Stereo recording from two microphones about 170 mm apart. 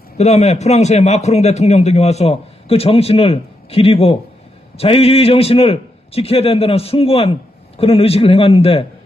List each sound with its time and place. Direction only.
0.2 s a man's voice: 40° left (ahead or behind)